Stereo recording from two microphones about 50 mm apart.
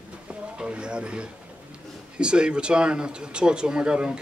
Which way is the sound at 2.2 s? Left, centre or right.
Centre.